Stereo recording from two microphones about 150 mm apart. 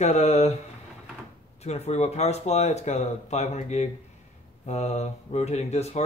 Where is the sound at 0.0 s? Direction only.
50° left (ahead or behind).